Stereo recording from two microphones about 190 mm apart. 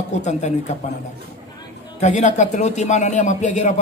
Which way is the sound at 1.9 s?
35° left (ahead or behind).